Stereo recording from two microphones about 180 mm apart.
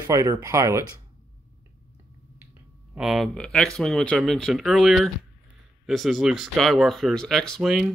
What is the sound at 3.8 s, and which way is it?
Speech, centre (ahead or behind).